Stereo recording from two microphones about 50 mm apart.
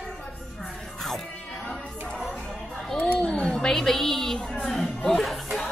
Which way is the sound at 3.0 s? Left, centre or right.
Left.